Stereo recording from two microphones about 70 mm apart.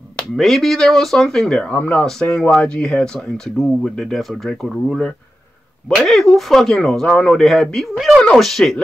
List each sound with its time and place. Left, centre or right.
0.4 s speech: centre
3.5 s speech: centre